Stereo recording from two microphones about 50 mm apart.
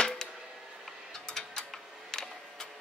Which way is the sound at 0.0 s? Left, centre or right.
Centre.